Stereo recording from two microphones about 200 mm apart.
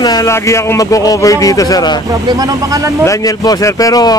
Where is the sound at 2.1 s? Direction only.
20° right (ahead or behind).